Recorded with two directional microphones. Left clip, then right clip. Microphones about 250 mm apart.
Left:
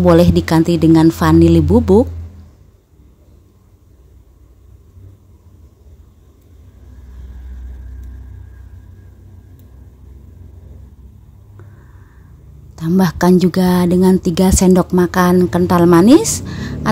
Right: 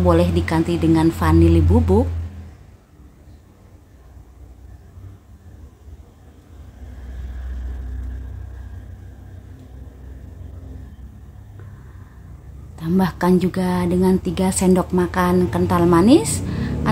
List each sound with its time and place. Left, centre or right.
0.0 s a woman's voice: left
12.7 s a woman's voice: left